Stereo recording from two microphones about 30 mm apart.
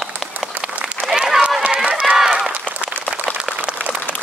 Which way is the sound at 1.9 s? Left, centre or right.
Right.